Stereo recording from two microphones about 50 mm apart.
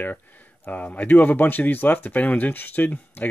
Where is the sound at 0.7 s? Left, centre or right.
Left.